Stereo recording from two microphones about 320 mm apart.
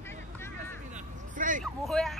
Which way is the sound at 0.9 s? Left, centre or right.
Right.